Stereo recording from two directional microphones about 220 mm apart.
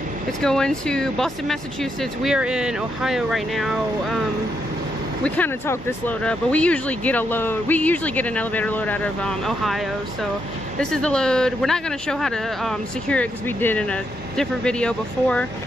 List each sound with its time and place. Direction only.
0.4 s speech: 5° left (ahead or behind)
5.2 s speech: 10° left (ahead or behind)